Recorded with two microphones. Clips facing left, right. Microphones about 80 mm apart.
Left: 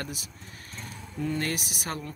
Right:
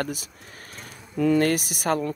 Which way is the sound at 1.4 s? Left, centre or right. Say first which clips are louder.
Right 9 dB; right.